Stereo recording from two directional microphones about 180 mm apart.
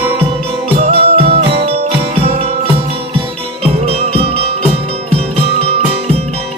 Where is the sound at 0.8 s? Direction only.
35° right (ahead or behind).